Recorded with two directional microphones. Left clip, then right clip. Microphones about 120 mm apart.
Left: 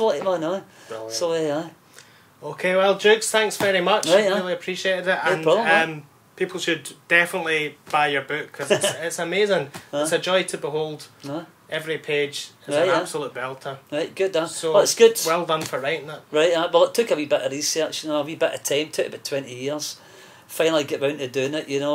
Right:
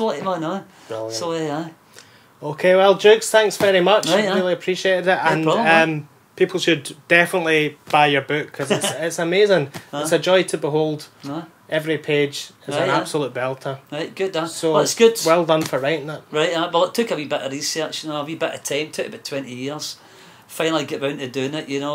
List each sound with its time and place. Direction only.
0.0 s speech: 45° left (ahead or behind)
2.4 s speech: 30° right (ahead or behind)
4.0 s speech: 40° left (ahead or behind)
4.4 s speech: 30° right (ahead or behind)
9.0 s speech: 30° right (ahead or behind)
13.8 s speech: 40° left (ahead or behind)
15.2 s speech: 30° right (ahead or behind)
16.3 s speech: 40° left (ahead or behind)